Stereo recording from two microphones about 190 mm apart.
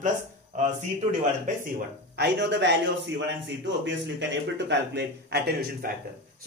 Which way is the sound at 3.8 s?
70° right (ahead or behind).